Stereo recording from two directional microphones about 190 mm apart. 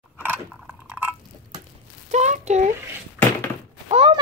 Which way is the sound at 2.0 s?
35° right (ahead or behind).